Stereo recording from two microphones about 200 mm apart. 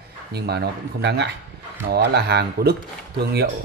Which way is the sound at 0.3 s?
55° right (ahead or behind).